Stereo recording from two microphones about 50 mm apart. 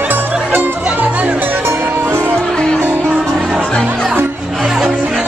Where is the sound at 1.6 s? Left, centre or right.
Right.